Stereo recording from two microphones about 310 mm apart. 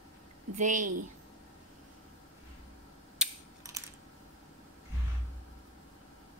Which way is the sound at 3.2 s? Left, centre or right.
Centre.